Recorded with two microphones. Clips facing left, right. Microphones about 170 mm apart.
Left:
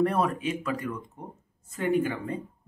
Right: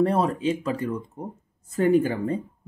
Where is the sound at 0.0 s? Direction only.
30° right (ahead or behind).